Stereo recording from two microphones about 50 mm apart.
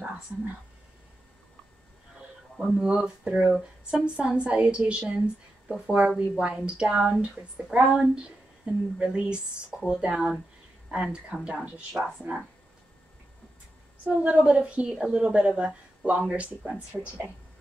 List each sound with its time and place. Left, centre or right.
2.8 s speech: centre
14.0 s speech: right
17.0 s speech: centre